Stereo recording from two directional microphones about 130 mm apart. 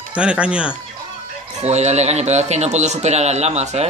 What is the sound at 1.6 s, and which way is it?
Music, 60° right (ahead or behind).